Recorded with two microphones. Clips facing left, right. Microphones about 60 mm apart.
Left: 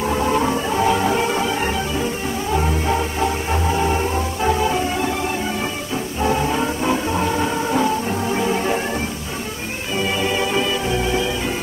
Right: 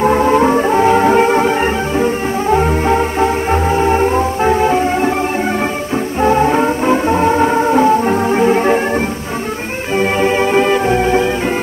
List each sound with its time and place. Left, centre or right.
0.0 s music: right
6.2 s music: right
9.9 s music: right